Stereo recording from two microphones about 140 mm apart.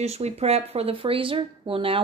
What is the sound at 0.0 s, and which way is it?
Speech, 50° right (ahead or behind).